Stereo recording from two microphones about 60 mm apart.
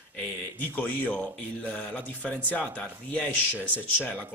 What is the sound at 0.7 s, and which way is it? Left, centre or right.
Speech, left.